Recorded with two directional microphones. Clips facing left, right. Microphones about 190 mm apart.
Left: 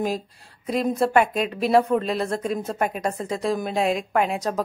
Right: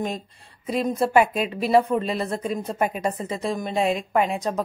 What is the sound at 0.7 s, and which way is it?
A woman's voice, centre (ahead or behind).